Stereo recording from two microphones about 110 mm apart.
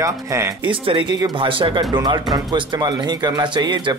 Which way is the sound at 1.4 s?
50° right (ahead or behind).